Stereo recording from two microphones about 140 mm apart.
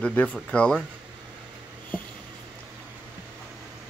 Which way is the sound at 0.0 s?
10° left (ahead or behind).